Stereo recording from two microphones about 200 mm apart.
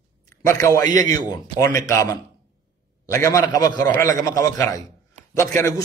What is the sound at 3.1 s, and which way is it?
A man's voice, 15° left (ahead or behind).